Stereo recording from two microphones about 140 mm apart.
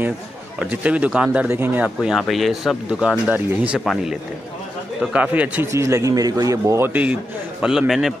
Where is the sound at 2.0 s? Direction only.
Centre (ahead or behind).